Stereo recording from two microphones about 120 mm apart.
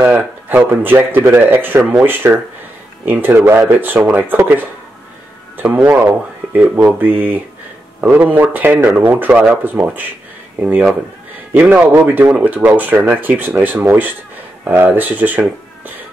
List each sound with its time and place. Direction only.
0.0 s speech: 15° right (ahead or behind)